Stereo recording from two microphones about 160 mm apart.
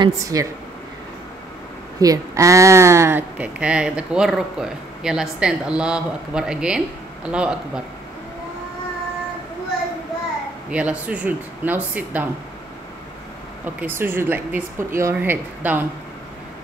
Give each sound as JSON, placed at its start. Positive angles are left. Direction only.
{"t": 0.0, "sound": "speech", "side_deg": -20}
{"t": 2.0, "sound": "a woman's voice", "side_deg": -20}
{"t": 10.7, "sound": "a woman's voice", "side_deg": -10}
{"t": 13.7, "sound": "a woman's voice", "side_deg": -15}